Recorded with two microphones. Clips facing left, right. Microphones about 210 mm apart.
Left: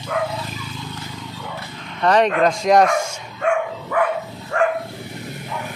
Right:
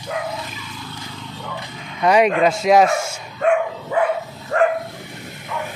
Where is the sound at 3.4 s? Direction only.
40° right (ahead or behind).